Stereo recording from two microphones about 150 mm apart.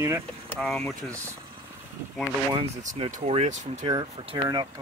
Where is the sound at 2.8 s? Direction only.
40° right (ahead or behind).